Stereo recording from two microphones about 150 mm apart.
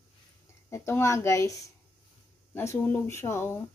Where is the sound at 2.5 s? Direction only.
15° left (ahead or behind).